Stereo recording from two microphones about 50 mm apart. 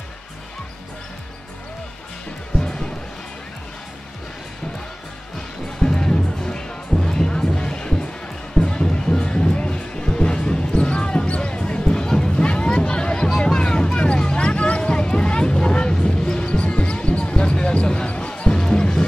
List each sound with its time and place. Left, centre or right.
2.6 s music: centre
5.8 s music: centre